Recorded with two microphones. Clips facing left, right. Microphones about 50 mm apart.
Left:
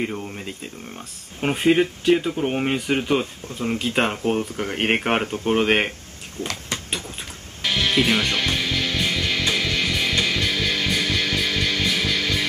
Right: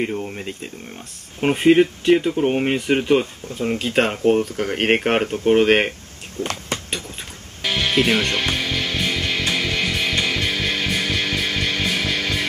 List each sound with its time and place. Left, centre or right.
0.2 s speech: centre
6.4 s speech: right
7.6 s music: centre